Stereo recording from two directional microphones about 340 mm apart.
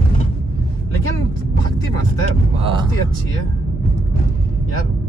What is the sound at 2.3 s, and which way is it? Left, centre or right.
Speech, centre.